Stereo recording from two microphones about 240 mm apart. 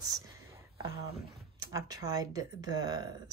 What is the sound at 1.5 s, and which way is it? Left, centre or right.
Speech, centre.